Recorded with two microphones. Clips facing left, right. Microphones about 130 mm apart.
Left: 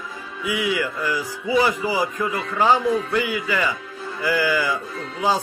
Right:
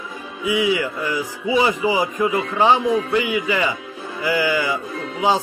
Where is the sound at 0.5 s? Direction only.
15° right (ahead or behind).